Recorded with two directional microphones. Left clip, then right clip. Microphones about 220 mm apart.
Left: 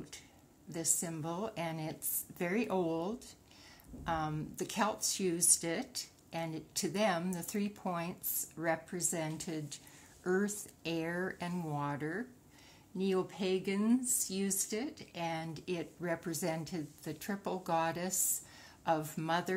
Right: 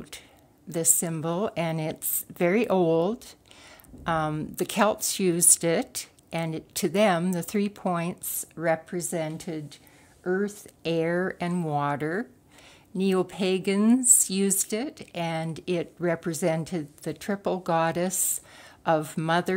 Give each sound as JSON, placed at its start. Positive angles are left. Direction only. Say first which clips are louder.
{"t": 0.7, "sound": "a woman's voice", "louder": "right 11 dB", "side_deg": -45}
{"t": 10.8, "sound": "a woman's voice", "louder": "right 12 dB", "side_deg": -40}